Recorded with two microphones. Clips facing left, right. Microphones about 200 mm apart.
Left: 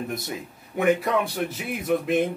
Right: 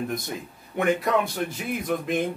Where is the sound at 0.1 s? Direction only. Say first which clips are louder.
Even; 5° left (ahead or behind).